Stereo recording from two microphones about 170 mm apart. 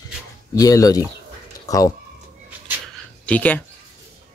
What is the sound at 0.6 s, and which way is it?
Speech, 20° left (ahead or behind).